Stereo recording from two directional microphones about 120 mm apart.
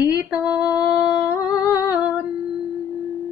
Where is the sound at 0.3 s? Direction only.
15° right (ahead or behind).